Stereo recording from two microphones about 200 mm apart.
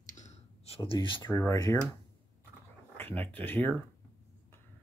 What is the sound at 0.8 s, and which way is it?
Speech, 25° left (ahead or behind).